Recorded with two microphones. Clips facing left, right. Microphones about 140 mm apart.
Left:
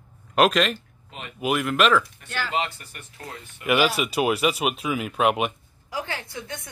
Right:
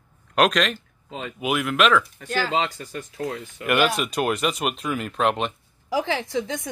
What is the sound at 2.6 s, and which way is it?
Speech, 90° right.